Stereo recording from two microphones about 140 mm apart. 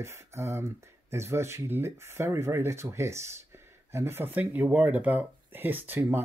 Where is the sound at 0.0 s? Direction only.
20° right (ahead or behind).